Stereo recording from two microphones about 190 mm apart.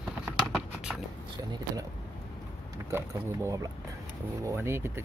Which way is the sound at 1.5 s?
20° right (ahead or behind).